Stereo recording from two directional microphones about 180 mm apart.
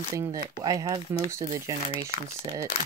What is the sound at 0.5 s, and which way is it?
Speech, 20° right (ahead or behind).